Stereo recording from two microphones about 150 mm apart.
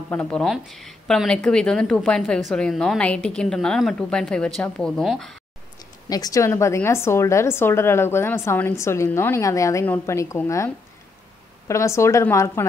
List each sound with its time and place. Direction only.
0.1 s a woman's voice: 10° left (ahead or behind)
6.0 s a woman's voice: 25° left (ahead or behind)